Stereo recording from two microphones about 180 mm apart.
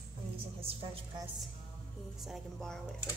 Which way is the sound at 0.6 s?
30° right (ahead or behind).